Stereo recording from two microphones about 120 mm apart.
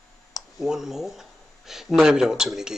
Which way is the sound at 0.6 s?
5° right (ahead or behind).